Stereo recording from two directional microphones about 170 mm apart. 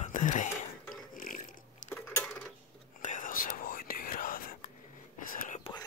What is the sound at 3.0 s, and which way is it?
Whispering, 50° left (ahead or behind).